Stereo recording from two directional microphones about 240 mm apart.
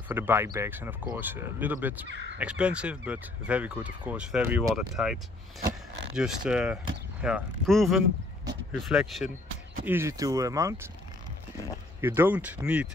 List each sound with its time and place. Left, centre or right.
0.1 s speech: centre
12.0 s speech: centre